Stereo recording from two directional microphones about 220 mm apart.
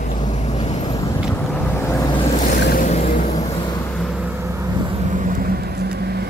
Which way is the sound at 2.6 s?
35° left (ahead or behind).